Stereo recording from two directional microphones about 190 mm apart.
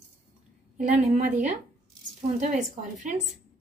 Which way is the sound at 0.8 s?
40° right (ahead or behind).